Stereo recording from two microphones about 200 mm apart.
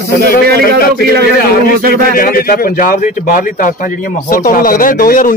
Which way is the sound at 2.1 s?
45° left (ahead or behind).